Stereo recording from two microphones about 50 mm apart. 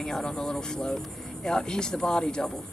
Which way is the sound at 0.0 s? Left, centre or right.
Centre.